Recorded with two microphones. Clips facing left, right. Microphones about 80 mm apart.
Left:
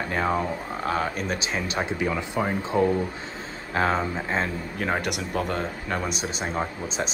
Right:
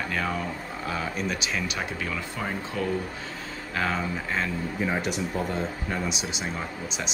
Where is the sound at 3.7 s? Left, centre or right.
Left.